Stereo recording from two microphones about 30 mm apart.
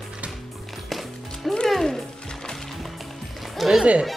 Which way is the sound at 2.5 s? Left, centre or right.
Centre.